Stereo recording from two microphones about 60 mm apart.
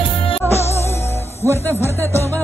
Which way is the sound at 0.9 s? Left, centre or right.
Left.